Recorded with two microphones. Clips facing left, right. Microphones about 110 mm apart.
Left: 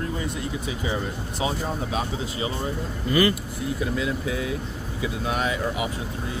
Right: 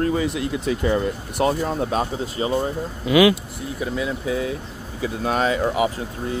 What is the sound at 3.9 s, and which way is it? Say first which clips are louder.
Speech: right 3 dB; 30° right (ahead or behind).